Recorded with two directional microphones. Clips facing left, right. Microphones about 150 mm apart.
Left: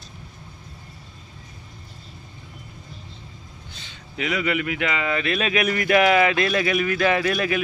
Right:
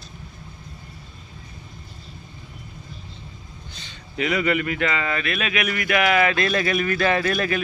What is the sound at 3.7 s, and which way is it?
Speech, 5° left (ahead or behind).